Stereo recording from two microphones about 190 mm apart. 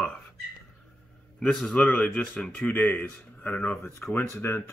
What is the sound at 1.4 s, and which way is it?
A man's voice, 5° left (ahead or behind).